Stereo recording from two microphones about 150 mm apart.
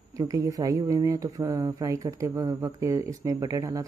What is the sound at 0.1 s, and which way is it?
Speech, 25° right (ahead or behind).